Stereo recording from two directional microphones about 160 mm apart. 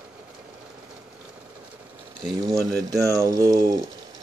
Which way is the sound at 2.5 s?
20° right (ahead or behind).